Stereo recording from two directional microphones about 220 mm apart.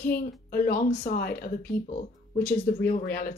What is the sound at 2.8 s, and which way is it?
Speech, 40° left (ahead or behind).